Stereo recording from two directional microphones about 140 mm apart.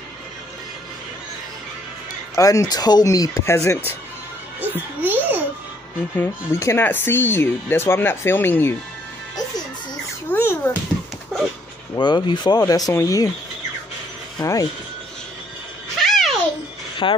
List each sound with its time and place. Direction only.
2.3 s speech: 20° left (ahead or behind)
4.6 s music: 15° right (ahead or behind)
6.1 s speech: 15° left (ahead or behind)
10.3 s babbling: 15° left (ahead or behind)
11.9 s speech: 30° left (ahead or behind)
14.4 s speech: 25° left (ahead or behind)
16.0 s music: centre (ahead or behind)
17.0 s speech: 40° left (ahead or behind)